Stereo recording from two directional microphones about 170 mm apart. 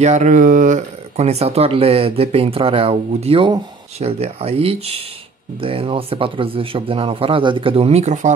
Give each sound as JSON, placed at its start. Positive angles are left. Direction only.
{"t": 0.0, "sound": "speech", "side_deg": -45}